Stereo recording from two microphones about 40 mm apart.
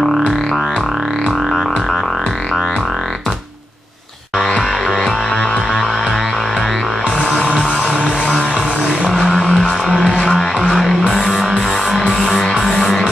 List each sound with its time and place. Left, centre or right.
4.6 s music: centre
9.2 s music: centre
10.2 s music: centre